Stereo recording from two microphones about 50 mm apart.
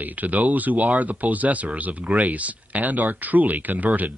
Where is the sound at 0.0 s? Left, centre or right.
Right.